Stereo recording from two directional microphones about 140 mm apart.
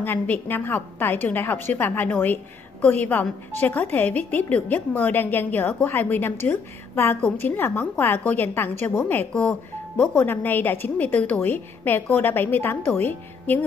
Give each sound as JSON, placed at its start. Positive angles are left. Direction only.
{"t": 0.0, "sound": "a woman's voice", "side_deg": 15}